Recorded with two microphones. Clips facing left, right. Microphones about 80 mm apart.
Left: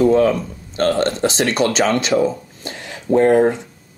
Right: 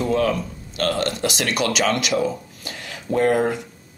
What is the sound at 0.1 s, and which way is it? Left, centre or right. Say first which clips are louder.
Speech: left 6 dB; left.